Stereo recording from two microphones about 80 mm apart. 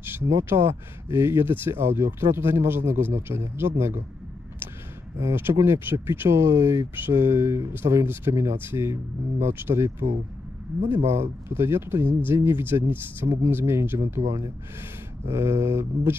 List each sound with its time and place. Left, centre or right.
0.0 s speech: right
5.2 s speech: right
15.2 s speech: right